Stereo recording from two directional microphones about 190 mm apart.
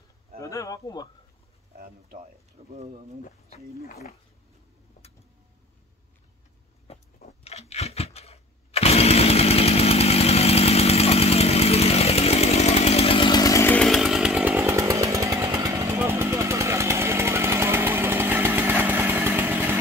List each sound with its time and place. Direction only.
0.4 s speech: 15° left (ahead or behind)
2.6 s speech: 35° right (ahead or behind)
6.9 s a sound: 30° left (ahead or behind); by 19.8 s 10° right (ahead or behind)